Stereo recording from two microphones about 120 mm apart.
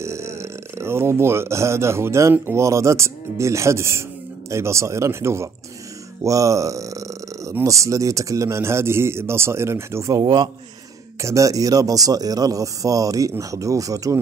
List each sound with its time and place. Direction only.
0.0 s speech: 25° right (ahead or behind)
10.2 s a man's voice: 35° right (ahead or behind)
11.1 s speech: 25° right (ahead or behind)